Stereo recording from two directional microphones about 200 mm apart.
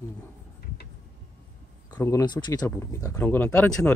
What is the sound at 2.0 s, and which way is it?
Speech, 15° left (ahead or behind).